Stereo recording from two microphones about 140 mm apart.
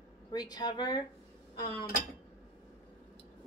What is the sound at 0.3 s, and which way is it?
Speech, 30° left (ahead or behind).